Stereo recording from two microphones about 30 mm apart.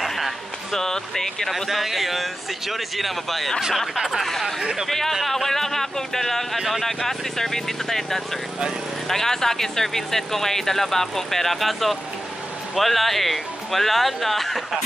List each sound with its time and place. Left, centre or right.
0.0 s a sound: centre
0.7 s speech: centre
1.5 s speech: centre
3.9 s speech: centre
4.2 s speech: centre
4.6 s speech: centre
4.8 s speech: centre